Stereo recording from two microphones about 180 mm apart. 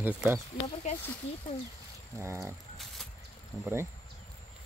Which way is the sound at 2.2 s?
15° right (ahead or behind).